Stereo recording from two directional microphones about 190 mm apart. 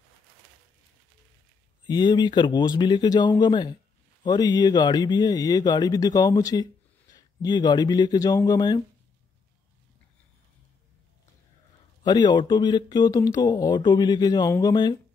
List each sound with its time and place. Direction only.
1.9 s speech: 20° left (ahead or behind)
12.0 s speech: 20° left (ahead or behind)